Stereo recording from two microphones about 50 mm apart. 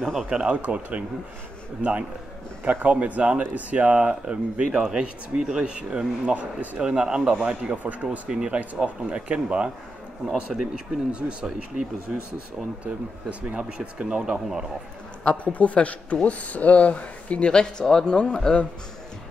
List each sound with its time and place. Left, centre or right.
0.0 s speech: centre
0.3 s speech: centre
0.6 s speech: right
6.8 s speech: centre
7.7 s speech: right
8.3 s speech: centre
11.1 s speech: right
12.5 s speech: right
15.5 s speech: left